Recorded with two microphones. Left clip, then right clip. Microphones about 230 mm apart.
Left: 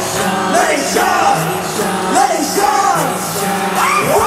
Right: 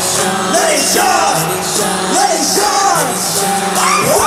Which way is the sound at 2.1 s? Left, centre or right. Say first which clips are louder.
Even; right.